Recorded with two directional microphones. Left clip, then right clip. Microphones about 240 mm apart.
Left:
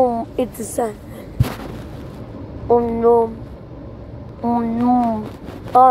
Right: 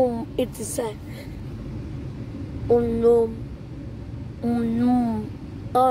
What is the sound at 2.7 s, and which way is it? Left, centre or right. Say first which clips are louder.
Speech: left 4 dB; centre.